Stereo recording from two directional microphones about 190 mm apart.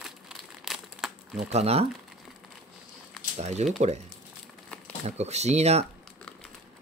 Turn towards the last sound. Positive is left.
turn(degrees=-35)  # may be behind; listen again after turning